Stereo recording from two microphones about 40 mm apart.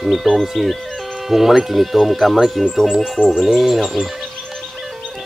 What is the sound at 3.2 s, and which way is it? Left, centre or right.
Speech, right.